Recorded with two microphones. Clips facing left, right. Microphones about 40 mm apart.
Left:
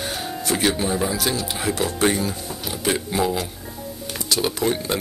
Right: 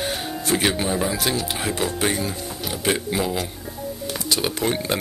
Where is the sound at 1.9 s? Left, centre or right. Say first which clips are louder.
Left 3 dB; centre.